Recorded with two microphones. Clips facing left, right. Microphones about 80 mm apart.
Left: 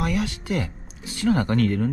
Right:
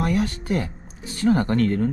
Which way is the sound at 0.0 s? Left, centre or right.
Right.